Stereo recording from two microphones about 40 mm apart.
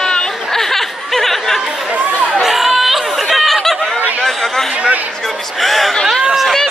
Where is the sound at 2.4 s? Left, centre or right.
Centre.